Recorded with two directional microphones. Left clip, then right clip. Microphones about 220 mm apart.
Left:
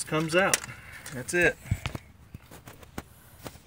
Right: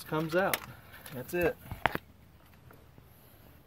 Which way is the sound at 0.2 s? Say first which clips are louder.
Left 5 dB; 5° left (ahead or behind).